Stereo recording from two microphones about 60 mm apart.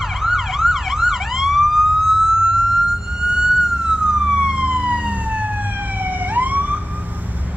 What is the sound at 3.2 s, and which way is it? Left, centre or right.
Emergency vehicle, centre.